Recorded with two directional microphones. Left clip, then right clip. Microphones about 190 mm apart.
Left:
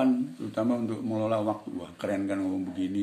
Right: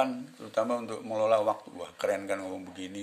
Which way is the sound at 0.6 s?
45° right (ahead or behind).